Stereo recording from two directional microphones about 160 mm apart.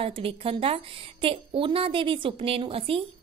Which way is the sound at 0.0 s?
35° right (ahead or behind).